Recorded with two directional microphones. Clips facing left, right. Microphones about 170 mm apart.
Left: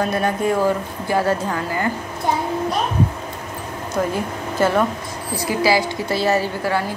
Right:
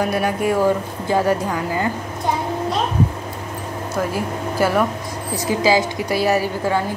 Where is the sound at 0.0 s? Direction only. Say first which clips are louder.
Even; 10° right (ahead or behind).